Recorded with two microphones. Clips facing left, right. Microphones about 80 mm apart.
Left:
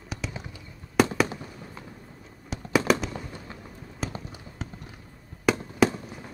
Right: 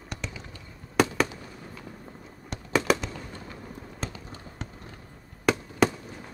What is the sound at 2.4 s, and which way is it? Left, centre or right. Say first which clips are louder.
Fireworks: left 2 dB; centre.